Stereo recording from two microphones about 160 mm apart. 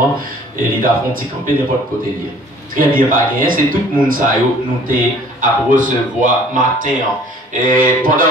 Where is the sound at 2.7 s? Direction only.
60° right (ahead or behind).